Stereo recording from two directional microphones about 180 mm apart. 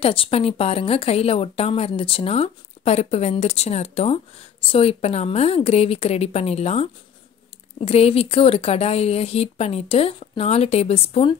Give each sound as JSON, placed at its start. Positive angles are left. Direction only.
{"t": 0.0, "sound": "a woman's voice", "side_deg": 30}